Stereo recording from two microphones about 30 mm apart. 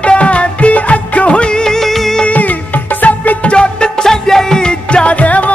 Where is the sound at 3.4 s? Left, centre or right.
Left.